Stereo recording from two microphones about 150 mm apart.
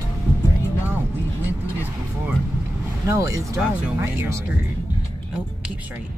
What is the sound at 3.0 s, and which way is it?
Speech, 20° right (ahead or behind).